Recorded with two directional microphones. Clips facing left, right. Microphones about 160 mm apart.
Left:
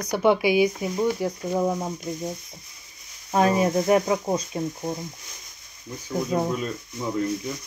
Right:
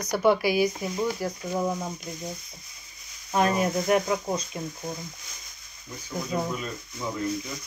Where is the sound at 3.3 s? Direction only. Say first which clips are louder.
Left 4 dB; 35° left (ahead or behind).